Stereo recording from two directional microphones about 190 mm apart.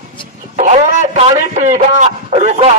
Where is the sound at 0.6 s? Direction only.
35° right (ahead or behind).